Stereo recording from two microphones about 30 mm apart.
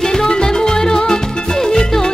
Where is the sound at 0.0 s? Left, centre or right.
Left.